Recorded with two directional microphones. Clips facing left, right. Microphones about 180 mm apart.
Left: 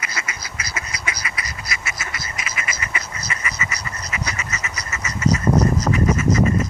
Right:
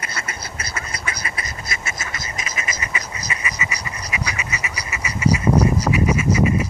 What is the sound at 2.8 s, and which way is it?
Duck, 15° right (ahead or behind).